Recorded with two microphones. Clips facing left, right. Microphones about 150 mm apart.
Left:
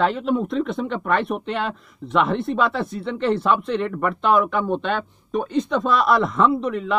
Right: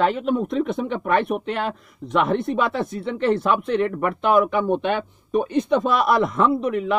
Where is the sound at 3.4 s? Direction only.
5° right (ahead or behind).